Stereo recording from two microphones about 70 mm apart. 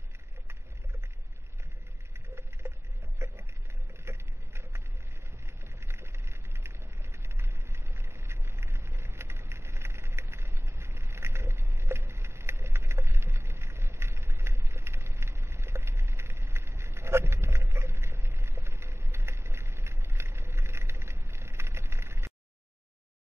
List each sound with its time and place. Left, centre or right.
2.1 s vehicle: right
3.2 s a sound: right
5.8 s vehicle: right